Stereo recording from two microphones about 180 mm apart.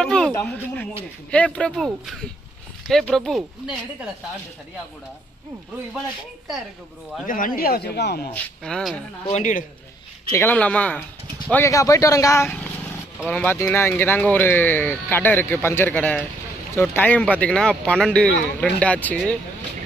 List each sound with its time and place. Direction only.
0.0 s a sound: 5° left (ahead or behind)
0.3 s speech: 10° left (ahead or behind)
7.2 s speech: 50° left (ahead or behind)
8.3 s speech: 5° left (ahead or behind)
9.3 s speech: 45° left (ahead or behind)
10.3 s speech: 10° left (ahead or behind)